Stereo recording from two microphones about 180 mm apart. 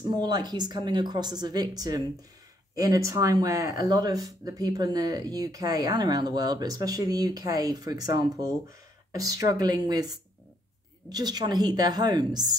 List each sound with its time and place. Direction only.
0.1 s speech: 20° right (ahead or behind)